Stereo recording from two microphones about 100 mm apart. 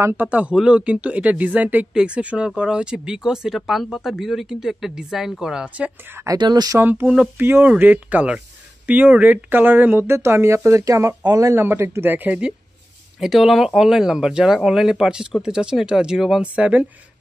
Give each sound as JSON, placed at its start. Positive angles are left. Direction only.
{"t": 0.0, "sound": "speech", "side_deg": -20}
{"t": 6.3, "sound": "speech", "side_deg": -45}
{"t": 6.8, "sound": "speech", "side_deg": -20}
{"t": 11.6, "sound": "speech", "side_deg": -25}